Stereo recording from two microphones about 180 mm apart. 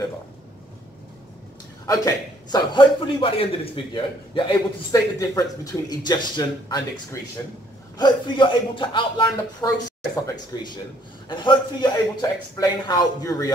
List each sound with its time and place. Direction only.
1.9 s a man's voice: 20° left (ahead or behind)